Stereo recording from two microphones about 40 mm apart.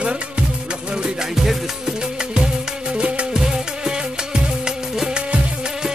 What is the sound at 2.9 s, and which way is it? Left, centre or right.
Music, right.